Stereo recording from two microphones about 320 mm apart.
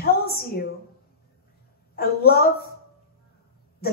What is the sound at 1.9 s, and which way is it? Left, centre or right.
Speech, left.